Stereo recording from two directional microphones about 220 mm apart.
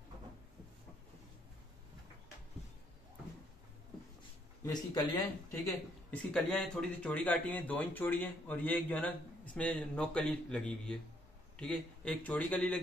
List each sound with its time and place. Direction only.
4.6 s speech: 15° left (ahead or behind)
6.0 s a man's voice: 5° left (ahead or behind)